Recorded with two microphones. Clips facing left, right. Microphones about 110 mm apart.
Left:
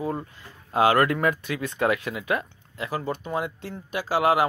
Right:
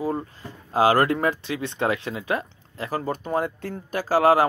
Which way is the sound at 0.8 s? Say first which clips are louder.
Right 1 dB; 30° right (ahead or behind).